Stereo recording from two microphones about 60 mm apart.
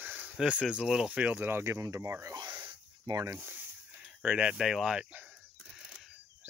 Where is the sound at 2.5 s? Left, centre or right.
Right.